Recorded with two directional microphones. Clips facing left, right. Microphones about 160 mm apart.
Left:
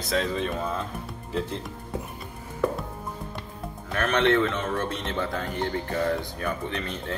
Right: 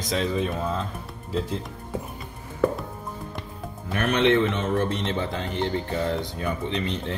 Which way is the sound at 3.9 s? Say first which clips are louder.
Right 2 dB; 15° right (ahead or behind).